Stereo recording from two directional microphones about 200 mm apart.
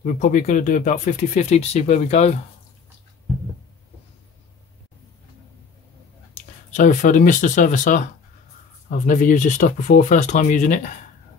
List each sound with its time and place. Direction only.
0.0 s speech: 40° left (ahead or behind)
6.7 s speech: 35° left (ahead or behind)